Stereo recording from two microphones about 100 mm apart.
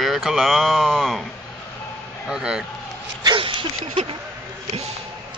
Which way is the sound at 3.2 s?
55° right (ahead or behind).